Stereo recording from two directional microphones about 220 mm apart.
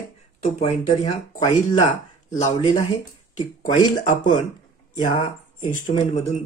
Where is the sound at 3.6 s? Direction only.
35° left (ahead or behind).